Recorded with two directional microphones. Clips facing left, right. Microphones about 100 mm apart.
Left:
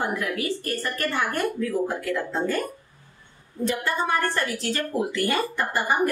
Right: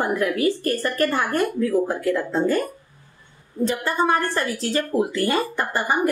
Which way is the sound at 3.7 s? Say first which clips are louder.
Right 3 dB; 30° right (ahead or behind).